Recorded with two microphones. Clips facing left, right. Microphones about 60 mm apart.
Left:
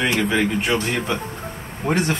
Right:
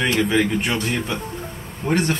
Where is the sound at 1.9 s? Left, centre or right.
Centre.